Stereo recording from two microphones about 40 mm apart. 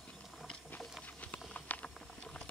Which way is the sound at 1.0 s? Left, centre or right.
Left.